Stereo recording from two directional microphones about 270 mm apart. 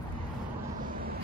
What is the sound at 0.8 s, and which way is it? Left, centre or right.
Vehicle, right.